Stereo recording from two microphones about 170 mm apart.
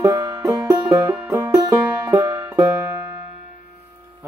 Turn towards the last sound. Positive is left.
turn(degrees=-15)  # may be behind; listen again after turning